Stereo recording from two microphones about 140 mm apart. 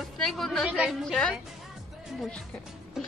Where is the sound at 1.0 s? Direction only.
5° left (ahead or behind).